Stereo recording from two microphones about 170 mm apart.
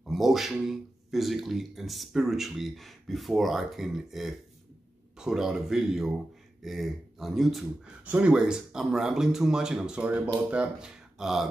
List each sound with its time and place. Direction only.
0.0 s speech: centre (ahead or behind)